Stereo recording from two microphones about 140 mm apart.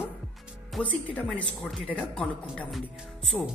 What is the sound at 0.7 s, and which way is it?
Speech, 5° left (ahead or behind).